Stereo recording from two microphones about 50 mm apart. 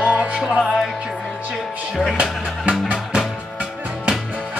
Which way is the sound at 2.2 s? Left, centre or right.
Right.